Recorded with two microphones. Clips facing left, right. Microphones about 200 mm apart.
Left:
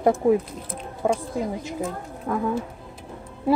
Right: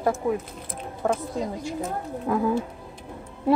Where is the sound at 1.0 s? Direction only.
10° left (ahead or behind).